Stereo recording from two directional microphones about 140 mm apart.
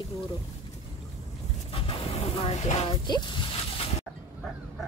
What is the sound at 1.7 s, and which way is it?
Vehicle, 40° left (ahead or behind).